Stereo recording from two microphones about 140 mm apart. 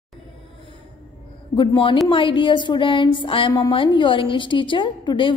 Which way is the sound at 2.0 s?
35° left (ahead or behind).